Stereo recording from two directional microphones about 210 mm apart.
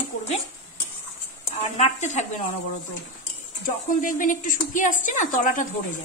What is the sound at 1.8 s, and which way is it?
Speech, 35° left (ahead or behind).